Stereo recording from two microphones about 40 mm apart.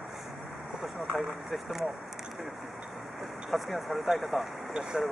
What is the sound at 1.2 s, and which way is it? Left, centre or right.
Speech, centre.